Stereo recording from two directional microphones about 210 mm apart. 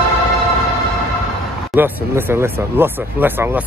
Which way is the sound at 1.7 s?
10° right (ahead or behind).